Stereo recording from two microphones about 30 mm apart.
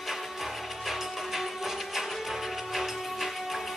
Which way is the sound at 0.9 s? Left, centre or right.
Centre.